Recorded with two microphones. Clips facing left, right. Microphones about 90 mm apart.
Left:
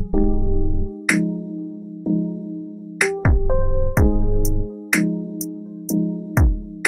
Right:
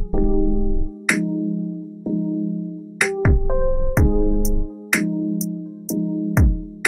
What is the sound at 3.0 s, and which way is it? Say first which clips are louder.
Music: even; centre (ahead or behind).